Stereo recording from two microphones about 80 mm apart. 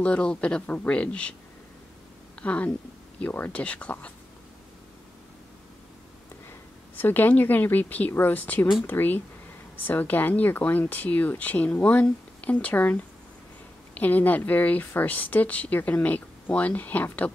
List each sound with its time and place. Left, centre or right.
0.0 s speech: centre
2.4 s speech: centre
7.0 s speech: left